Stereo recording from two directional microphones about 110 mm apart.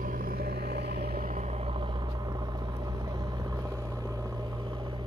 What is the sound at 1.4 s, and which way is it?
Vehicle, 75° right (ahead or behind).